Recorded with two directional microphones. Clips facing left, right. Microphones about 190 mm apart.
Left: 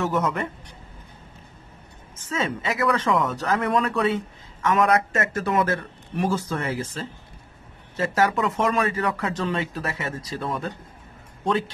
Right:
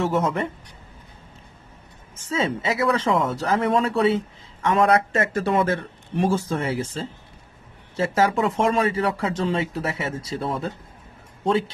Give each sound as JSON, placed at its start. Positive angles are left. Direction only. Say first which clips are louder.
{"t": 0.0, "sound": "speech", "louder": "right 2 dB", "side_deg": -25}
{"t": 2.2, "sound": "speech", "louder": "right 3 dB", "side_deg": -25}